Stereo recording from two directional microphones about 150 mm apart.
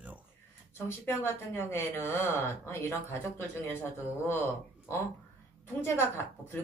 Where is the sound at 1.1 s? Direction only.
15° left (ahead or behind).